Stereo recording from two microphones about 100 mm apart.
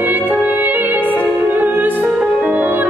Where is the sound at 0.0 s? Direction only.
20° right (ahead or behind).